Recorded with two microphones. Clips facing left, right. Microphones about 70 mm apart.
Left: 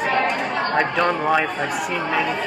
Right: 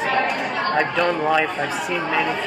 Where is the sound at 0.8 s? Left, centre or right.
Left.